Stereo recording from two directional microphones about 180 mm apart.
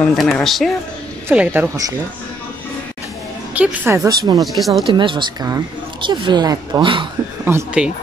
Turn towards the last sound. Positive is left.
turn(degrees=-10)  # may be behind; listen again after turning